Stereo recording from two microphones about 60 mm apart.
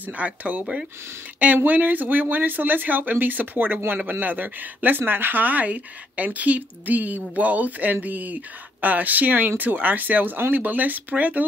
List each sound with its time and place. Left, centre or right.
0.0 s speech: right